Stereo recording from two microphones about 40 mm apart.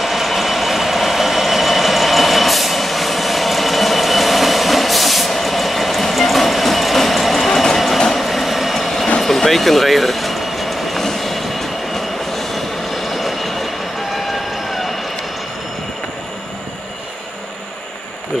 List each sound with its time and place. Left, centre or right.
0.0 s vehicle: centre
7.6 s train: centre